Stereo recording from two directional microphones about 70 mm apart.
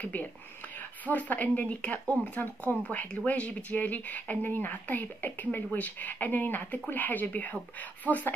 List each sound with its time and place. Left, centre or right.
0.0 s speech: left